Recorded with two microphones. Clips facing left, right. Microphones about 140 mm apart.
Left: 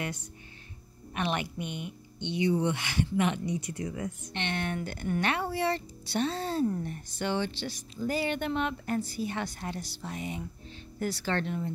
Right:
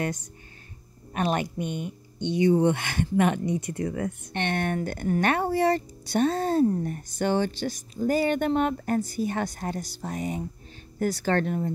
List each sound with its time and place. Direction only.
0.0 s speech: 40° right (ahead or behind)